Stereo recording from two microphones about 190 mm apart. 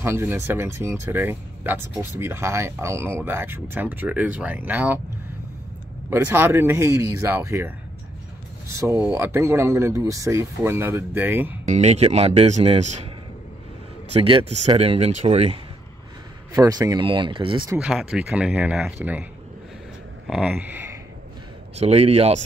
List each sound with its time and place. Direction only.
0.0 s speech: 15° right (ahead or behind)
6.0 s speech: 10° right (ahead or behind)
11.6 s speech: 35° right (ahead or behind)
14.1 s speech: 30° right (ahead or behind)
16.5 s speech: 20° right (ahead or behind)
17.7 s speech: 5° right (ahead or behind)
20.2 s speech: 5° right (ahead or behind)
21.7 s speech: 35° right (ahead or behind)